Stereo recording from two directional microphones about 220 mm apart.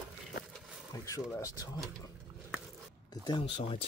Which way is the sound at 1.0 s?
15° left (ahead or behind).